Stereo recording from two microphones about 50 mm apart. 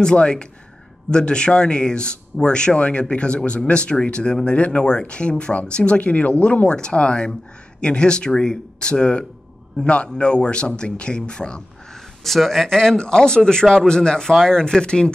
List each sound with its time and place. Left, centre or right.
0.0 s speech: centre
12.2 s a man's voice: centre